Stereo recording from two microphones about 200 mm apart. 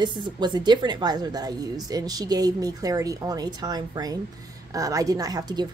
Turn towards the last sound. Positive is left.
turn(degrees=-20)  # may be behind; listen again after turning